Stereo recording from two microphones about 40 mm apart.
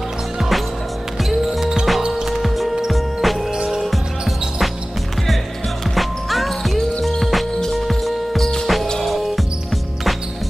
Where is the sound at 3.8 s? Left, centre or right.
Centre.